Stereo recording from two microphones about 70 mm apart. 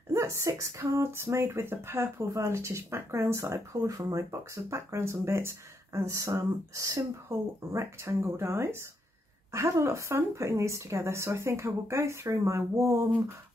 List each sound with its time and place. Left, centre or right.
0.1 s speech: right